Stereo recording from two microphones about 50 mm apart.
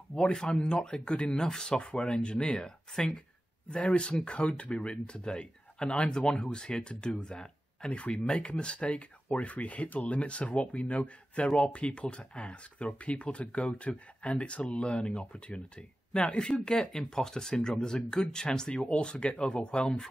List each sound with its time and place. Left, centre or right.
0.1 s speech: centre